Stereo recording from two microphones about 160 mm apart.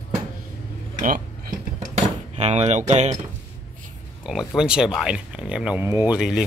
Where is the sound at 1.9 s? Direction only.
45° right (ahead or behind).